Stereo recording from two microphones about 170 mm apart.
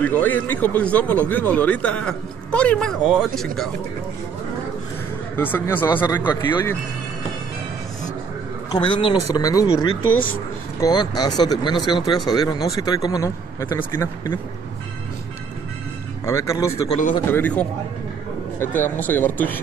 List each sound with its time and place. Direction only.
0.0 s a man's voice: 10° left (ahead or behind)
5.3 s a man's voice: 10° left (ahead or behind)
8.7 s speech: 30° left (ahead or behind)
10.8 s speech: 25° left (ahead or behind)
16.3 s speech: 15° left (ahead or behind)
17.3 s a man's voice: 10° left (ahead or behind)